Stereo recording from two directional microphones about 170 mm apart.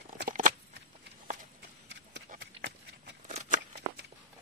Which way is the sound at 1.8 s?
75° right (ahead or behind).